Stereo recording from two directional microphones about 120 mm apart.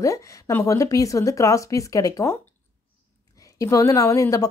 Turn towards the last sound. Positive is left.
turn(degrees=25)  # may be behind; listen again after turning